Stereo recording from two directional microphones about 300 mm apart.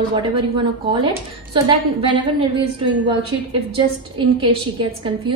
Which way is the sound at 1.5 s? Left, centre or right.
Centre.